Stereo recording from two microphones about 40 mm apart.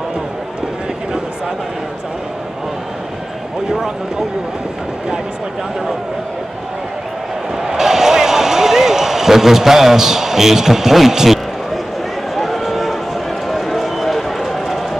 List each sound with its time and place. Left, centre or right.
7.5 s basketball bounce: centre
12.4 s run: centre